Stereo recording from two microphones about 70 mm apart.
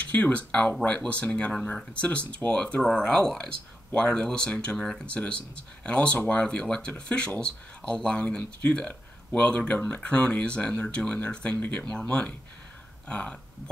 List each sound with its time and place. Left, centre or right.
0.2 s speech: centre